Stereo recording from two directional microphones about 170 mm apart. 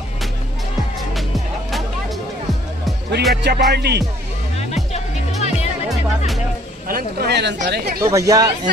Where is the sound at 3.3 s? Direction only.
75° right (ahead or behind).